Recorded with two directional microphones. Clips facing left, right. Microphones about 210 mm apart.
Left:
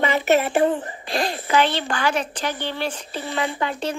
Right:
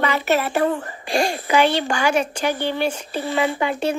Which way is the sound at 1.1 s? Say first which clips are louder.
Right 3 dB; 10° right (ahead or behind).